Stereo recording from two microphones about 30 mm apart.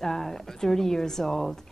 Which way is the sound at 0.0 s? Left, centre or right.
Centre.